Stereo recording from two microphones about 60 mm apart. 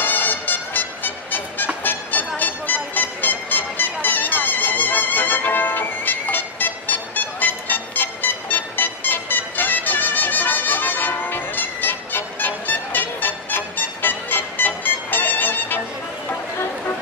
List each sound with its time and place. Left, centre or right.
0.0 s music: left